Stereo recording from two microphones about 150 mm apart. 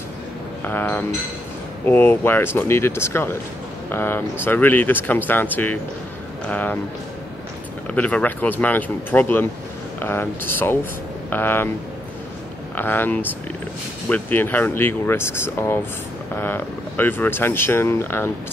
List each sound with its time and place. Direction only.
0.7 s speech: 15° left (ahead or behind)
7.9 s speech: 10° left (ahead or behind)
12.7 s speech: 15° left (ahead or behind)